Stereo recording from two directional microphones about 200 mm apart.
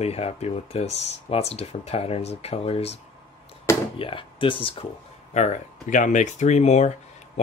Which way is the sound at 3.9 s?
25° left (ahead or behind).